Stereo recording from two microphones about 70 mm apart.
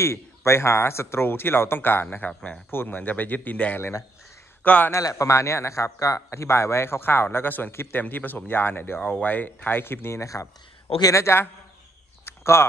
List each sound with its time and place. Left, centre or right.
0.0 s speech: left
4.9 s speech: left
11.0 s a man's voice: left
12.3 s a sound: left